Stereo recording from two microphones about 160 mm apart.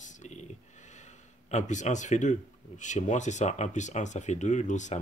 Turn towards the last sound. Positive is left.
turn(degrees=50)  # may be behind; listen again after turning